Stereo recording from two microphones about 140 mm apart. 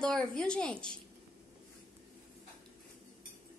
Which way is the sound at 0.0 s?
5° left (ahead or behind).